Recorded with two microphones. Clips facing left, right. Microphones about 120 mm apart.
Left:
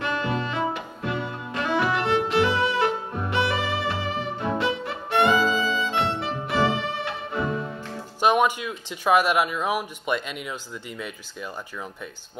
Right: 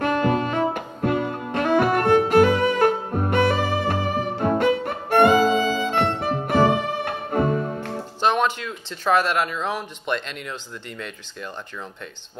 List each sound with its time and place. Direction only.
0.0 s music: 50° right (ahead or behind)
8.2 s speech: 10° left (ahead or behind)